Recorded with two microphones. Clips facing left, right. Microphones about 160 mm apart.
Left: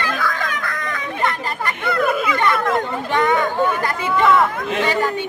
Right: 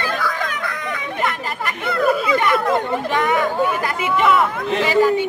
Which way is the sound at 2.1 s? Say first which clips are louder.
Right 3 dB; 30° right (ahead or behind).